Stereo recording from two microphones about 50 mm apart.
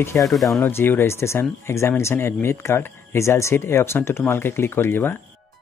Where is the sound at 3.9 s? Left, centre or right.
Left.